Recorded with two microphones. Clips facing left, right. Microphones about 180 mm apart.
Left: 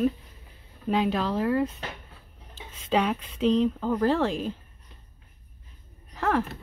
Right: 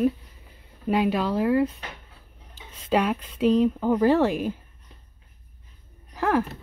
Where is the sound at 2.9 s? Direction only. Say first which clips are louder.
Right 2 dB; 5° right (ahead or behind).